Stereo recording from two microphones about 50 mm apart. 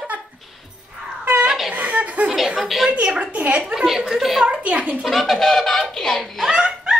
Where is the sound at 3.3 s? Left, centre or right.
Right.